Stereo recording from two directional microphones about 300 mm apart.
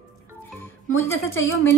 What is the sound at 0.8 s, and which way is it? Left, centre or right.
Speech, left.